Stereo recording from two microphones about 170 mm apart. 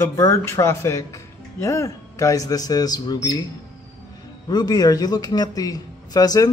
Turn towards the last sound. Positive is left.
turn(degrees=20)  # may be behind; listen again after turning